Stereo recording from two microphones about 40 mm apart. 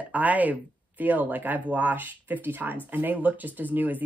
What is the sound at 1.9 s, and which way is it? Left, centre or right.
Speech, right.